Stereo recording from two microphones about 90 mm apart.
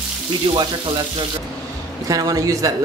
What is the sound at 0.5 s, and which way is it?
Speech, 65° right (ahead or behind).